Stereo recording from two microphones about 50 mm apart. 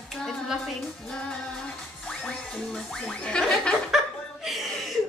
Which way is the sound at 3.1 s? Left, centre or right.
Centre.